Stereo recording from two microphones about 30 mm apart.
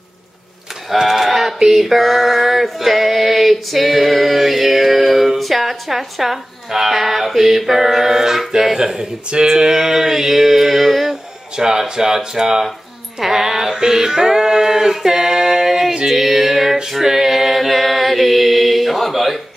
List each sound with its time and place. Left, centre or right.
0.9 s a sound: centre
6.7 s music: centre
8.7 s speech: right
9.5 s music: centre
11.5 s speech: centre
13.2 s a sound: centre
16.1 s music: centre
17.0 s chant: centre